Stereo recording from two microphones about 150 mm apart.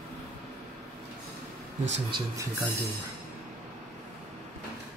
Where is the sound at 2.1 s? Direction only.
20° right (ahead or behind).